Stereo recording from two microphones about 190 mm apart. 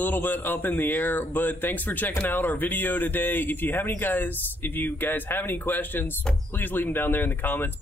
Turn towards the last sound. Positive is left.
turn(degrees=10)  # may be behind; listen again after turning